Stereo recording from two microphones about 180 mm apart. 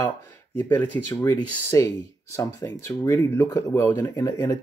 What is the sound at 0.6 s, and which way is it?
Speech, 10° left (ahead or behind).